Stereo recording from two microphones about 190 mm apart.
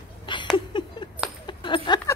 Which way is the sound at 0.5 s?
25° left (ahead or behind).